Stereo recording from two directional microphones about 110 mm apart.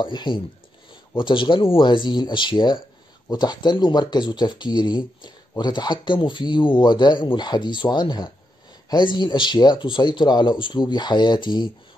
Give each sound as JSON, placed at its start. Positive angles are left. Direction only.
{"t": 0.0, "sound": "speech", "side_deg": 45}